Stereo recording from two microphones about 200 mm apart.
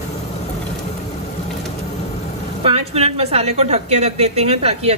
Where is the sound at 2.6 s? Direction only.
30° right (ahead or behind).